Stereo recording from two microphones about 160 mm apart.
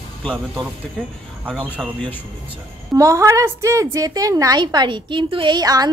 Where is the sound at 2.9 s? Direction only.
20° right (ahead or behind).